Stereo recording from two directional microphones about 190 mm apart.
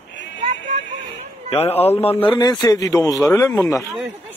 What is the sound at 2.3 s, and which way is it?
Speech, 20° left (ahead or behind).